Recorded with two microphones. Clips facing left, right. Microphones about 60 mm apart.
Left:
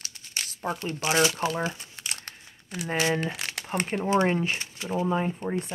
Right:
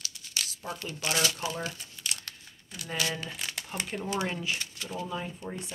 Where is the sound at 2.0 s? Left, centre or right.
Left.